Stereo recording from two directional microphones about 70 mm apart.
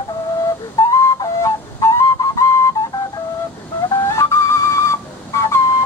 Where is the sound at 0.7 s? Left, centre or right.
Left.